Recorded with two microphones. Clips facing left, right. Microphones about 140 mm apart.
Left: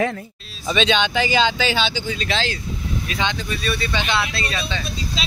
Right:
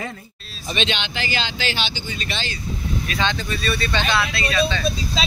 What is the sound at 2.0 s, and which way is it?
Speech, 90° left.